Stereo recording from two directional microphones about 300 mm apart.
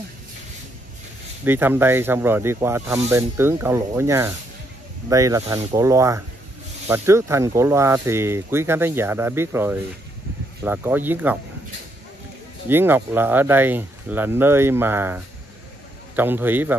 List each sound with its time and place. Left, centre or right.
1.4 s speech: centre
12.6 s speech: centre